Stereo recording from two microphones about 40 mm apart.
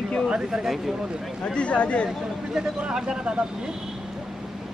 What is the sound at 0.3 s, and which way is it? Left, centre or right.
Speech, centre.